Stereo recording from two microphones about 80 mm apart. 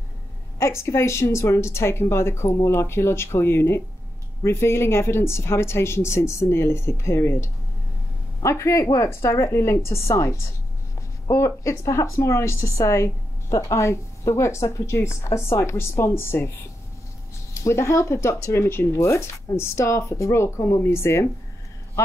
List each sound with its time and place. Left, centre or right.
0.6 s speech: left
17.6 s speech: left